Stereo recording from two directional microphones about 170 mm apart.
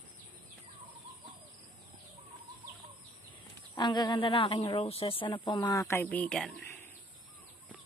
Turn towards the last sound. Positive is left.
turn(degrees=0)  # may be behind; listen again after turning